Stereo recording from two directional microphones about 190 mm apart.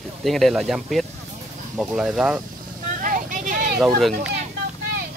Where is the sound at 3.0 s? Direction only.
45° right (ahead or behind).